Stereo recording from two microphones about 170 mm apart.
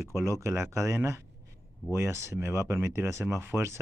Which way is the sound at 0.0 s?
15° right (ahead or behind).